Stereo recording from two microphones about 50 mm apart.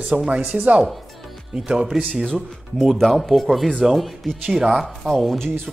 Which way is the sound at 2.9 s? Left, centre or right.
Centre.